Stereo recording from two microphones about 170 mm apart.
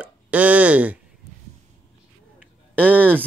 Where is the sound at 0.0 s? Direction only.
10° right (ahead or behind).